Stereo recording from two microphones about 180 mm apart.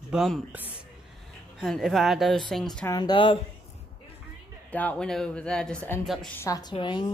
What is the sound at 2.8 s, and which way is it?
Speech, 25° left (ahead or behind).